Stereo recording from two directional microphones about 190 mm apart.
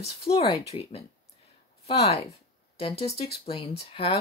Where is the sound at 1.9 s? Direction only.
35° left (ahead or behind).